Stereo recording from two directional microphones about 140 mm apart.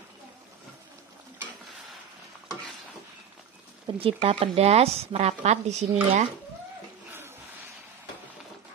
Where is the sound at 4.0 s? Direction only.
40° right (ahead or behind).